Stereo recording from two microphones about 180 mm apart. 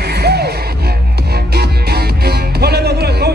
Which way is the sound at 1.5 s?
60° right (ahead or behind).